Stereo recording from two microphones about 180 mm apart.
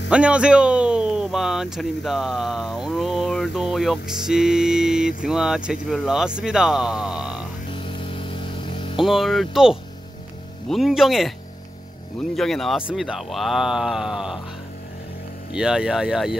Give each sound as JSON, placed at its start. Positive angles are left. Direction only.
{"t": 0.1, "sound": "speech", "side_deg": -5}
{"t": 7.7, "sound": "mains hum", "side_deg": 30}
{"t": 9.0, "sound": "speech", "side_deg": 0}
{"t": 15.5, "sound": "speech", "side_deg": -5}